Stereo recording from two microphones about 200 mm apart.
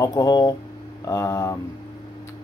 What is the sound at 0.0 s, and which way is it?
Speech, 20° left (ahead or behind).